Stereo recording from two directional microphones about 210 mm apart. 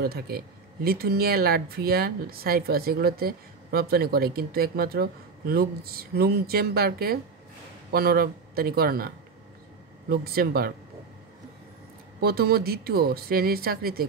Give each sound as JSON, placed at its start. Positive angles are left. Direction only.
{"t": 0.0, "sound": "speech", "side_deg": -45}
{"t": 12.2, "sound": "speech", "side_deg": -50}